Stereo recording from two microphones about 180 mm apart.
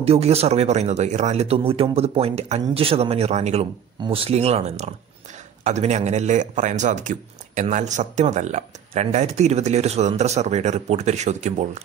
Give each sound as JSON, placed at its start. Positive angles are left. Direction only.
{"t": 0.0, "sound": "a man's voice", "side_deg": -35}